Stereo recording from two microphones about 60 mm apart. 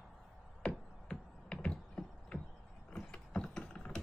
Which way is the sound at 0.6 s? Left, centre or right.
Centre.